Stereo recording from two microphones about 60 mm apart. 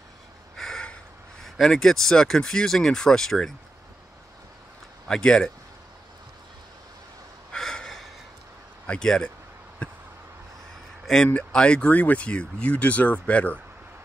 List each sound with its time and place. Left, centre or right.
0.6 s a sound: centre
1.4 s speech: centre
5.0 s speech: centre
7.5 s snort: centre
9.0 s speech: centre
11.3 s speech: centre